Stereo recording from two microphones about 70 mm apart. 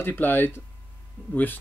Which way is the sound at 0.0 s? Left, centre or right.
Left.